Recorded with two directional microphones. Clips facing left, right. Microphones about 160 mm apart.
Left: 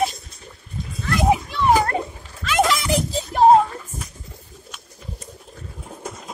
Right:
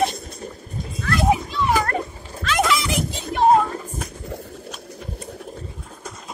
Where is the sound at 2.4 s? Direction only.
10° left (ahead or behind).